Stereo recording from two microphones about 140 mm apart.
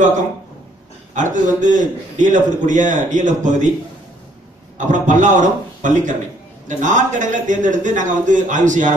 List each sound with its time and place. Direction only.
1.1 s a man's voice: 65° right (ahead or behind)
4.7 s a man's voice: 65° right (ahead or behind)